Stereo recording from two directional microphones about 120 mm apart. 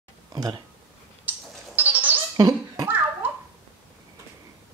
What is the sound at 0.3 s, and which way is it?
Speech, 35° right (ahead or behind).